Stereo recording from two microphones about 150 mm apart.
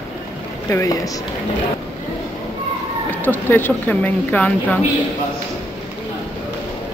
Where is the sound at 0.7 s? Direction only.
20° left (ahead or behind).